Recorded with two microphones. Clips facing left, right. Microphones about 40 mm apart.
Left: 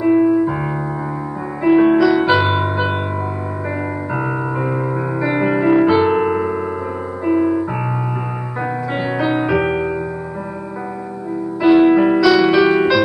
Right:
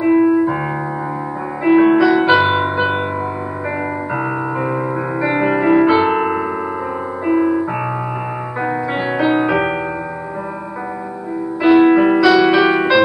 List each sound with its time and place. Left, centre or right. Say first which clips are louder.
0.0 s music: right 1 dB; centre
1.6 s music: right 1 dB; centre
4.2 s music: even; centre
5.2 s keyboard: right 1 dB; centre
7.2 s music: right 1 dB; centre
8.6 s music: right 2 dB; centre
11.6 s music: right 1 dB; centre